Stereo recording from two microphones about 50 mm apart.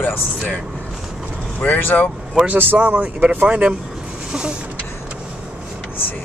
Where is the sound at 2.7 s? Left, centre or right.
Right.